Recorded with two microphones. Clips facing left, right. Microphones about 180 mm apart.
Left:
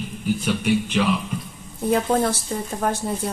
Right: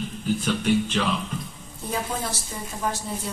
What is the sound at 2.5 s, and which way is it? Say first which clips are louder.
Speech: left 8 dB; 60° left (ahead or behind).